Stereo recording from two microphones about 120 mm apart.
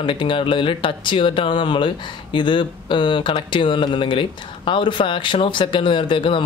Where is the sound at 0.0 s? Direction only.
45° left (ahead or behind).